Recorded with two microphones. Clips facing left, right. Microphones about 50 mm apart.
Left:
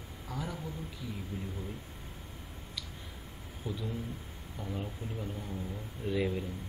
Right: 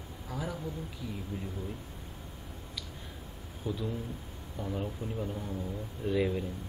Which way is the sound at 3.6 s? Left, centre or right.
Centre.